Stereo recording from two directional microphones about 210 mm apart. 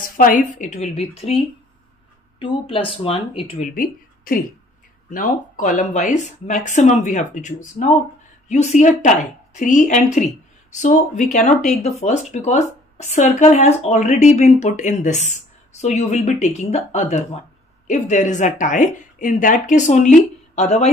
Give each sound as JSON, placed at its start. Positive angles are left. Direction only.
{"t": 0.0, "sound": "speech", "side_deg": 40}
{"t": 3.7, "sound": "speech", "side_deg": 40}